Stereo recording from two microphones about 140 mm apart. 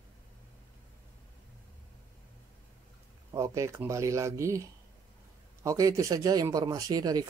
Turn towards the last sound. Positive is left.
turn(degrees=-30)  # may be behind; listen again after turning